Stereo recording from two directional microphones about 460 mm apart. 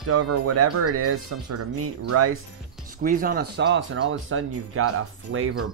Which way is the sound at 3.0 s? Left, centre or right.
Centre.